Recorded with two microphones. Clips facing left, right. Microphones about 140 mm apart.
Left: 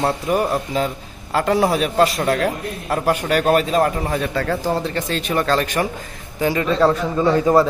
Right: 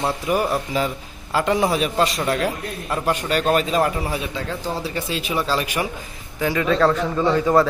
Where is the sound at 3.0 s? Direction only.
10° left (ahead or behind).